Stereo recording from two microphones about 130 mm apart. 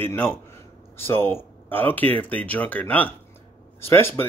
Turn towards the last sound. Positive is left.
turn(degrees=15)  # may be behind; listen again after turning